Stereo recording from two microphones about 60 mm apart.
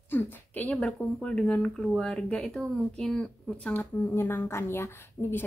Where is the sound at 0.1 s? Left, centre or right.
Left.